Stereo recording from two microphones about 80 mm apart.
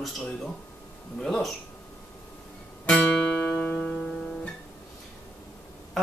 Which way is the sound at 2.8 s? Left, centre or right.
Centre.